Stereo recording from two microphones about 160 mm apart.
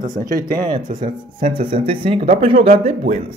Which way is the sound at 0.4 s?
30° right (ahead or behind).